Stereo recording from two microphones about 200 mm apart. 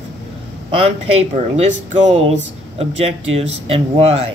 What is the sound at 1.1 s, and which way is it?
Speech, 30° right (ahead or behind).